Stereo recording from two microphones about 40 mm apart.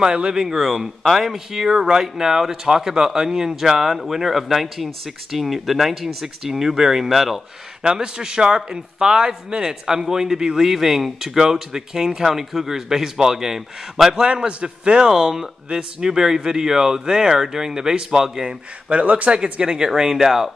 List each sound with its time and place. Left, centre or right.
0.0 s speech: centre
7.8 s speech: right
18.9 s speech: right
19.6 s speech: centre